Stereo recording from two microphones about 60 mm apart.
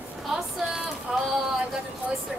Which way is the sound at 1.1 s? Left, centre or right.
Centre.